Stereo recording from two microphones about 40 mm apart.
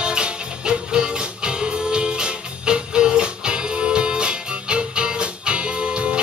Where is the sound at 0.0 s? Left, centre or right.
Right.